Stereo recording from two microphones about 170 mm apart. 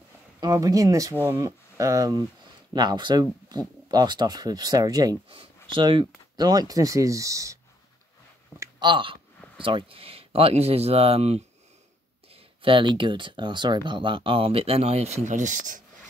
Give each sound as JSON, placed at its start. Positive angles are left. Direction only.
{"t": 0.4, "sound": "speech", "side_deg": -20}
{"t": 8.5, "sound": "speech", "side_deg": -25}
{"t": 12.6, "sound": "speech", "side_deg": -30}